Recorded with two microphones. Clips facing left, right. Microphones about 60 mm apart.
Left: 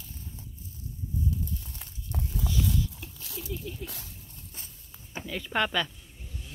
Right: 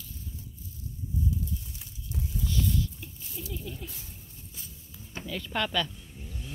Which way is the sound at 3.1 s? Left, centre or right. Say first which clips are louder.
Left 1 dB; left.